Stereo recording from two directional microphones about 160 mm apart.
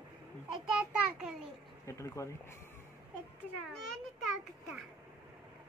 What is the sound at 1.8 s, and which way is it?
Speech, 20° left (ahead or behind).